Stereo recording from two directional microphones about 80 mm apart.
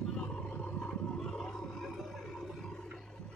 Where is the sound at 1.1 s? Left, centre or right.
Centre.